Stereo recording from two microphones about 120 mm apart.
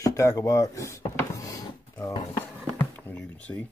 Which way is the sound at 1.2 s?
25° left (ahead or behind).